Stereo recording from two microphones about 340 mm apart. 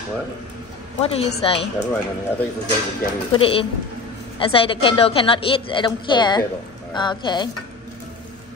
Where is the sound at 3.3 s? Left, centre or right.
Centre.